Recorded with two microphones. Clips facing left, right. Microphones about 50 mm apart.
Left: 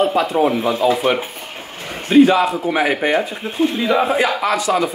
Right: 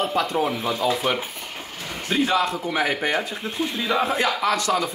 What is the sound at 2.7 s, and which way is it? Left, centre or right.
A man's voice, left.